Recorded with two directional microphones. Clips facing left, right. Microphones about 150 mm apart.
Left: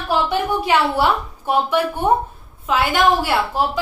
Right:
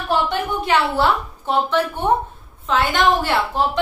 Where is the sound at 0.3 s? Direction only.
10° left (ahead or behind).